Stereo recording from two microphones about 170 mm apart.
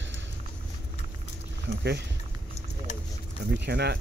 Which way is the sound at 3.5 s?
75° right (ahead or behind).